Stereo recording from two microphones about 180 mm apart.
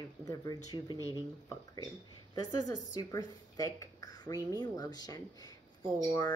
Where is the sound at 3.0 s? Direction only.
20° left (ahead or behind).